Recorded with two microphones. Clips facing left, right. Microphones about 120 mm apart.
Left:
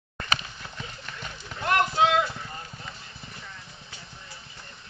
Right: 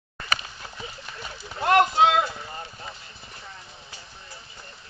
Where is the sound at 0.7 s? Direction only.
10° right (ahead or behind).